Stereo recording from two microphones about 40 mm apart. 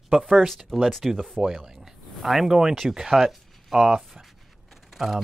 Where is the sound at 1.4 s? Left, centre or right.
Centre.